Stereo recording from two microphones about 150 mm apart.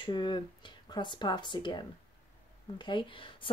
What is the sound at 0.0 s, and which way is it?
A woman's voice, 30° left (ahead or behind).